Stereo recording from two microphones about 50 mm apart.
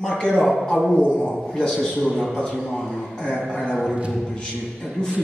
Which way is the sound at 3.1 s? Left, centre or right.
Left.